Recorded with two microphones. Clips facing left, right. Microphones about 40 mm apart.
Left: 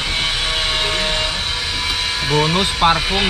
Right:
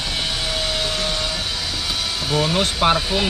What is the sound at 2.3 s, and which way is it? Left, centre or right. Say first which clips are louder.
Speech: left 3 dB; left.